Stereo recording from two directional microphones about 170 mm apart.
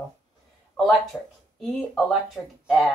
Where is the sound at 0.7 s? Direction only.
Centre (ahead or behind).